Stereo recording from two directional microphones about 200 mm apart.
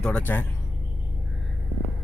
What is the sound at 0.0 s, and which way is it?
Speech, 10° left (ahead or behind).